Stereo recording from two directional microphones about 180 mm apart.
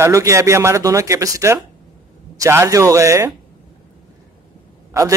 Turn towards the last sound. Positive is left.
turn(degrees=-15)  # may be behind; listen again after turning